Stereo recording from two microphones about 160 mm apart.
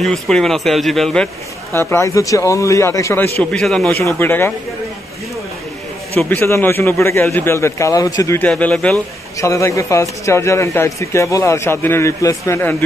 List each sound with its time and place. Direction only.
0.0 s a man's voice: 5° left (ahead or behind)
1.8 s a man's voice: 15° left (ahead or behind)
3.5 s a man's voice: 5° left (ahead or behind)
3.9 s a man's voice: 15° left (ahead or behind)
6.1 s a man's voice: 15° left (ahead or behind)
8.5 s a man's voice: 5° left (ahead or behind)
9.4 s a man's voice: 20° left (ahead or behind)